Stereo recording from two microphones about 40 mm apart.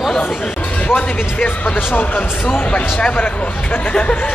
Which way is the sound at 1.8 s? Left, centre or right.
Left.